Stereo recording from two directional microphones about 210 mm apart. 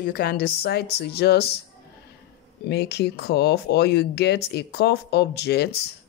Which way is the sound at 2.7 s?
50° left (ahead or behind).